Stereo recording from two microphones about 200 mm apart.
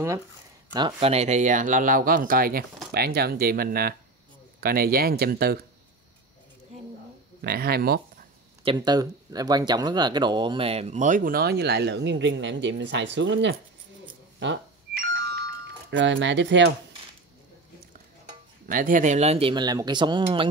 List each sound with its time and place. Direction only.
0.7 s speech: 25° right (ahead or behind); by 5.7 s 50° right (ahead or behind)
7.4 s speech: 50° right (ahead or behind)
8.6 s speech: 20° right (ahead or behind); by 13.6 s 65° right (ahead or behind)
15.9 s speech: 65° right (ahead or behind)
18.2 s speech: 40° right (ahead or behind); by 20.4 s 25° right (ahead or behind)